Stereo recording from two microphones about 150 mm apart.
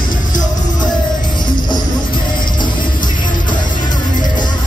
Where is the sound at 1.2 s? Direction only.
30° left (ahead or behind).